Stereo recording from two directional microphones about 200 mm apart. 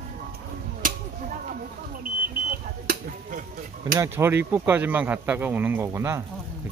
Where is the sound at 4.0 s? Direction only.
10° right (ahead or behind).